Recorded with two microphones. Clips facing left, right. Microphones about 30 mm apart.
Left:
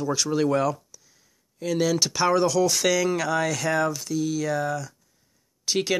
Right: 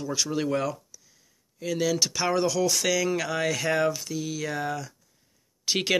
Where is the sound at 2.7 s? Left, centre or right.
Centre.